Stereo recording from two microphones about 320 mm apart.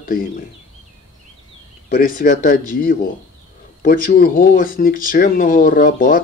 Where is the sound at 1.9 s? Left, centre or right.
Left.